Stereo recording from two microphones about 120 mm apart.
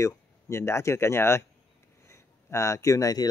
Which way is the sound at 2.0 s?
25° left (ahead or behind).